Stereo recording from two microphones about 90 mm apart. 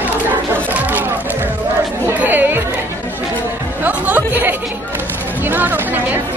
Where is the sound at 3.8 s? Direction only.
20° right (ahead or behind).